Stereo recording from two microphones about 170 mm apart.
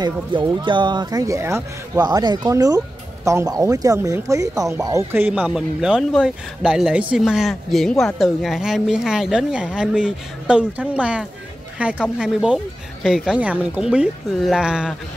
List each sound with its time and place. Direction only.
0.0 s speech: 30° right (ahead or behind); by 15.0 s 5° right (ahead or behind)